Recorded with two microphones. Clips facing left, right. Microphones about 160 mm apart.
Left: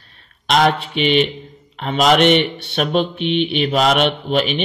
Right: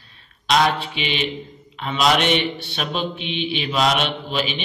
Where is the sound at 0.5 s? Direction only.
55° left (ahead or behind).